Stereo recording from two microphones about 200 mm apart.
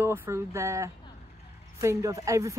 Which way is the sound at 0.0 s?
10° right (ahead or behind).